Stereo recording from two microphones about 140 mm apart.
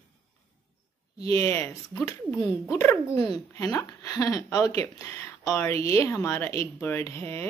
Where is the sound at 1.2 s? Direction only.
20° left (ahead or behind).